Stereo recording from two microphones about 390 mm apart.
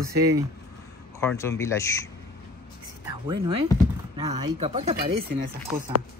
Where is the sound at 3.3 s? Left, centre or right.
Centre.